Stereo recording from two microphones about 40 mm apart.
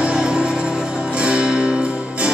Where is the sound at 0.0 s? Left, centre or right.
Right.